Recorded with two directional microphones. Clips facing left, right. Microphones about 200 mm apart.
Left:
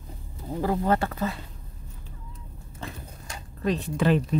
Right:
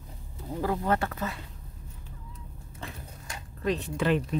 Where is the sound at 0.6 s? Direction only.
30° left (ahead or behind).